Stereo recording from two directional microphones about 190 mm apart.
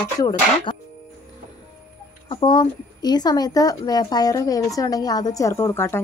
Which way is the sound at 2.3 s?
25° left (ahead or behind).